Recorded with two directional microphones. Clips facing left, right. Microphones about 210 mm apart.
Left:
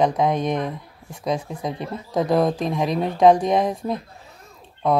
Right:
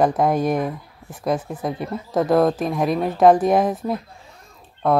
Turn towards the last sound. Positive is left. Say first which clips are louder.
# right 1 dB
turn(degrees=-5)  # may be behind; listen again after turning